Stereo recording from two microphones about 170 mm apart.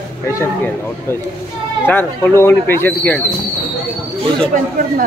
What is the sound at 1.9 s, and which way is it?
Speech, 15° left (ahead or behind).